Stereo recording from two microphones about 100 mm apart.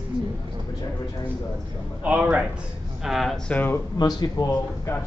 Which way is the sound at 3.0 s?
Centre (ahead or behind).